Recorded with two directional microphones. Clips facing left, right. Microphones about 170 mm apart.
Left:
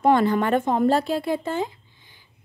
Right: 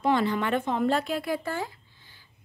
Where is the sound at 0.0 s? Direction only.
50° left (ahead or behind).